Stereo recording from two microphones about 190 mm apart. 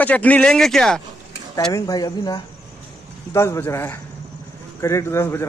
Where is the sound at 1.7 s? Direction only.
20° left (ahead or behind).